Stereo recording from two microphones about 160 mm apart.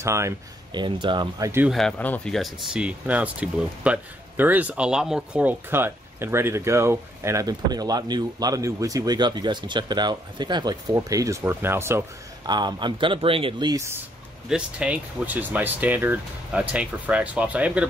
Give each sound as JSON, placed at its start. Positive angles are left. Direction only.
{"t": 0.0, "sound": "speech", "side_deg": -20}
{"t": 0.7, "sound": "speech", "side_deg": -30}
{"t": 1.7, "sound": "speech", "side_deg": 5}
{"t": 12.4, "sound": "speech", "side_deg": -25}
{"t": 14.5, "sound": "speech", "side_deg": -5}